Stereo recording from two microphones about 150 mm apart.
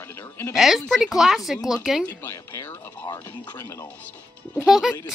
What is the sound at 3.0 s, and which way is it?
Speech, 25° left (ahead or behind).